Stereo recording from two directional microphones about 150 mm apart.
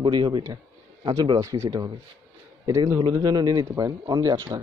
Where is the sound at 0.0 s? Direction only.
30° right (ahead or behind).